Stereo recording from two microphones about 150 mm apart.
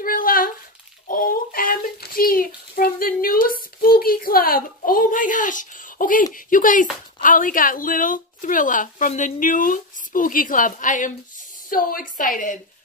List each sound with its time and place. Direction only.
0.0 s a sound: 70° left (ahead or behind)
1.0 s child singing: 65° left (ahead or behind)
6.3 s speech: 65° left (ahead or behind)
11.7 s speech: 70° left (ahead or behind)